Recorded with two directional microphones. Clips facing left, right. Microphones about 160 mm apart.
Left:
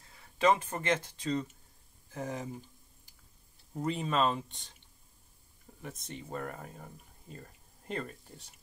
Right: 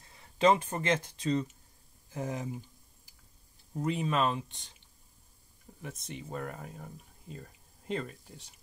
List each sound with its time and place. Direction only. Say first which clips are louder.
0.2 s speech: right 2 dB; 20° right (ahead or behind)
3.8 s speech: even; 5° right (ahead or behind)
5.8 s speech: right 1 dB; centre (ahead or behind)